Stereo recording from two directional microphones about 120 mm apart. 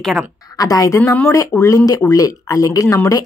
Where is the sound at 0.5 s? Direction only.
30° left (ahead or behind).